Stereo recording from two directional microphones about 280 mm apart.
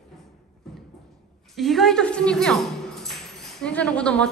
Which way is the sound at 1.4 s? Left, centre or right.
Centre.